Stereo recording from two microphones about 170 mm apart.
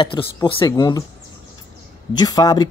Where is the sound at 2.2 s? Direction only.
20° left (ahead or behind).